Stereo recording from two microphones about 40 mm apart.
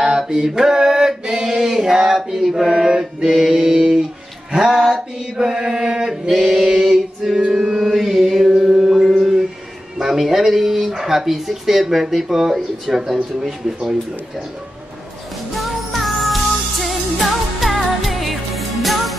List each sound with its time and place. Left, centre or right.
0.0 s mantra: centre
9.9 s speech: centre
15.5 s music: centre
16.8 s music of asia: centre